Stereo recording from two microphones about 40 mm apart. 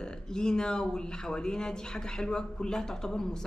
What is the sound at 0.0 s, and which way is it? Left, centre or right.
A woman's voice, centre.